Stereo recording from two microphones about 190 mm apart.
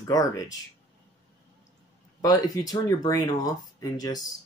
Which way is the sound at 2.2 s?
20° left (ahead or behind).